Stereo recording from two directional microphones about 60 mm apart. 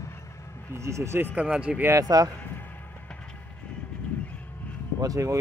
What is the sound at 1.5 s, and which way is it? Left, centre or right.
Speech, centre.